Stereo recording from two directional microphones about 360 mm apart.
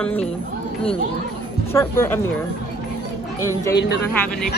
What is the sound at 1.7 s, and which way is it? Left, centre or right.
Speech, centre.